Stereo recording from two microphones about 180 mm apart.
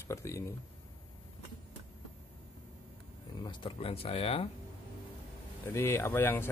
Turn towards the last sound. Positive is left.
turn(degrees=10)  # may be behind; listen again after turning